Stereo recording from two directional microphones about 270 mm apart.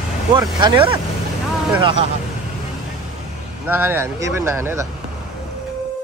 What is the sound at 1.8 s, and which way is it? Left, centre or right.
Speech, centre.